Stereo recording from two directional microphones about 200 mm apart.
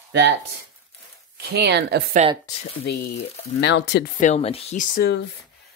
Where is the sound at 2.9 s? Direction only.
55° left (ahead or behind).